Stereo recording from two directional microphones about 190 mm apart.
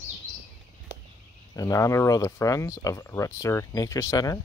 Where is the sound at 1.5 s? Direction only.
15° left (ahead or behind).